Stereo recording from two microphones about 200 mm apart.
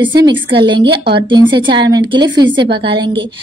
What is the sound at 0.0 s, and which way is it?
Speech, 25° right (ahead or behind).